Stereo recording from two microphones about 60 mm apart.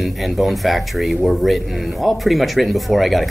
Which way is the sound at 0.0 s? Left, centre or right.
Centre.